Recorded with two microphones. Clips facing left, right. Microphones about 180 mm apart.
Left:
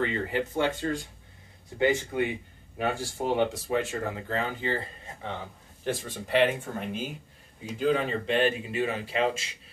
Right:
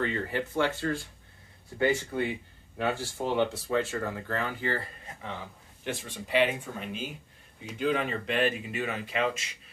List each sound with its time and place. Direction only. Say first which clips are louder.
0.0 s speech: left 2 dB; 20° left (ahead or behind)
5.9 s speech: left 2 dB; 45° left (ahead or behind)
7.8 s speech: left 3 dB; 35° left (ahead or behind)